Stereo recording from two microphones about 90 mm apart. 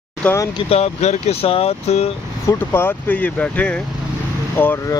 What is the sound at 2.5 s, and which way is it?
Speech, 25° left (ahead or behind).